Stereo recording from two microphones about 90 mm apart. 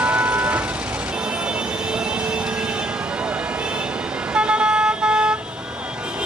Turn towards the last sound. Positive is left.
turn(degrees=-10)  # may be behind; listen again after turning